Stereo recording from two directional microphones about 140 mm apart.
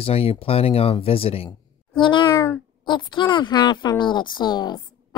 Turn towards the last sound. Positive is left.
turn(degrees=30)  # may be behind; listen again after turning